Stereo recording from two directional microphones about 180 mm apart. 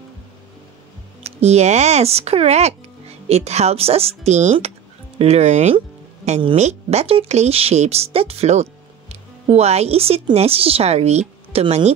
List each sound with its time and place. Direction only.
1.2 s speech: 35° right (ahead or behind)